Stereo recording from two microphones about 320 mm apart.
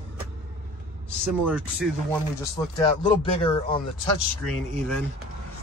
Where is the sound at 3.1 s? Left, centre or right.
Centre.